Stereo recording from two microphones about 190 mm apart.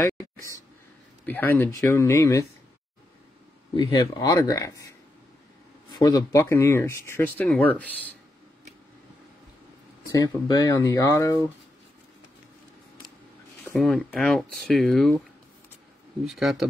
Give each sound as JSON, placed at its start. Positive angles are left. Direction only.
{"t": 0.0, "sound": "a sound", "side_deg": 15}
{"t": 1.2, "sound": "speech", "side_deg": 10}
{"t": 3.7, "sound": "speech", "side_deg": 25}
{"t": 5.9, "sound": "speech", "side_deg": 20}
{"t": 10.0, "sound": "speech", "side_deg": 20}
{"t": 13.7, "sound": "speech", "side_deg": 0}
{"t": 16.3, "sound": "speech", "side_deg": 0}